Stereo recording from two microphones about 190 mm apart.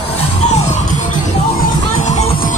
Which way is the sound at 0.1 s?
35° left (ahead or behind).